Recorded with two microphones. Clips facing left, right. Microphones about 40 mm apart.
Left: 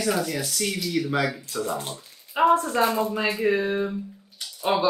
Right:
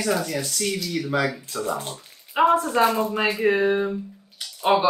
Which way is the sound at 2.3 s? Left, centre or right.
Right.